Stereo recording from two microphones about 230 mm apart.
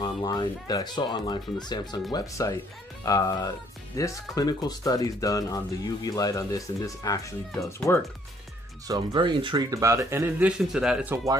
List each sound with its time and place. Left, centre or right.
0.0 s speech: centre
8.8 s speech: centre